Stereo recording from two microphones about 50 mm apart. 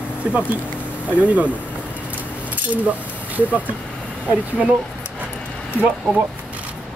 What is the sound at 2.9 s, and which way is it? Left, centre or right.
Speech, right.